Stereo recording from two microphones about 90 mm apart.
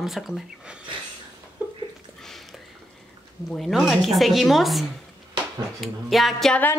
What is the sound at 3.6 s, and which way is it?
Speech, 5° right (ahead or behind).